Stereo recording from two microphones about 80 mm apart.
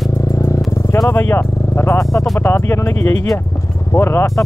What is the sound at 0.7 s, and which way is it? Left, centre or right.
Speech, left.